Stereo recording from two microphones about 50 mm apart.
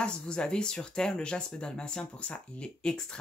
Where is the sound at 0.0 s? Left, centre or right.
Centre.